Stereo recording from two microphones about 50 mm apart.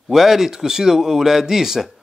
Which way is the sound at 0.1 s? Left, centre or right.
Centre.